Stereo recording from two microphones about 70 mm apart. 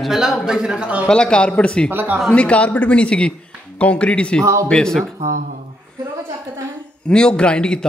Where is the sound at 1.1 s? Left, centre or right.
Centre.